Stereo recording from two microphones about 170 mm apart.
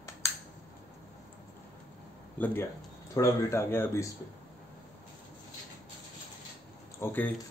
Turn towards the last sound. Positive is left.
turn(degrees=10)  # may be behind; listen again after turning